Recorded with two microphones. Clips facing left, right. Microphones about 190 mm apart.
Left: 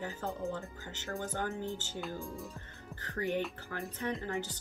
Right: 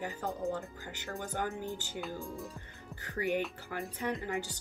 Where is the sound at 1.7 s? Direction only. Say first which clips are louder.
Even; centre (ahead or behind).